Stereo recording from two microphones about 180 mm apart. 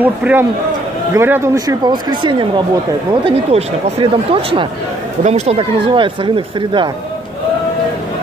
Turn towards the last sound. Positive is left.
turn(degrees=-25)  # may be behind; listen again after turning